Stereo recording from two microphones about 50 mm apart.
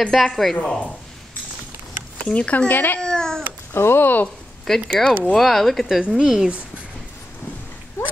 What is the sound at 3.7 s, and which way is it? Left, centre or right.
Speech, left.